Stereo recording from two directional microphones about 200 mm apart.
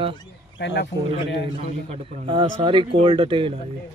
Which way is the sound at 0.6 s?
60° left (ahead or behind).